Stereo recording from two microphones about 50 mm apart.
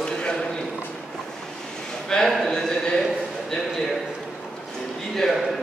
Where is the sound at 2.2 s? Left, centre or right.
Centre.